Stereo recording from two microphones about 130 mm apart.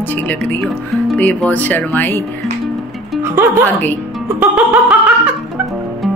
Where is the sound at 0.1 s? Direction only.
15° left (ahead or behind).